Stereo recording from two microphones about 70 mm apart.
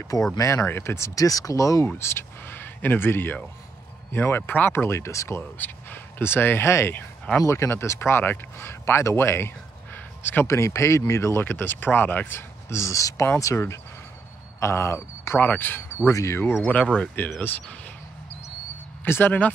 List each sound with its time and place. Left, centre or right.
0.4 s speech: left
0.7 s speech: left
1.9 s speech: left
5.6 s speech: left
14.6 s speech: left
16.1 s speech: left
16.6 s speech: centre
19.0 s speech: left